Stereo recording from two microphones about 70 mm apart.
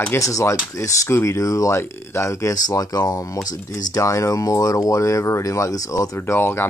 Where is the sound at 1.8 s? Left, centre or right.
Left.